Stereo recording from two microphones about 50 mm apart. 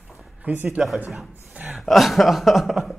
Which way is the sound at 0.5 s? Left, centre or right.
Right.